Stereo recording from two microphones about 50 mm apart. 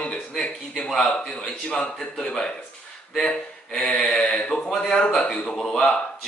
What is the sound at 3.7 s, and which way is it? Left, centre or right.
A man's voice, left.